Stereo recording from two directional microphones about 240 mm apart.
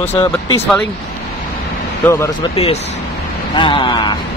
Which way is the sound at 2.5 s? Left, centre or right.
Left.